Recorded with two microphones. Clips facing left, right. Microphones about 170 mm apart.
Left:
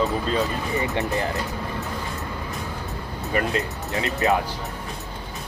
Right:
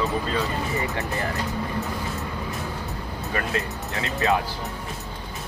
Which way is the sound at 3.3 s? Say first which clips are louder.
Left 4 dB; 20° left (ahead or behind).